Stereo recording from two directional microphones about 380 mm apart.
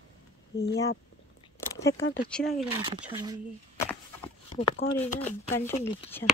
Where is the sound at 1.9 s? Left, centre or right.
Left.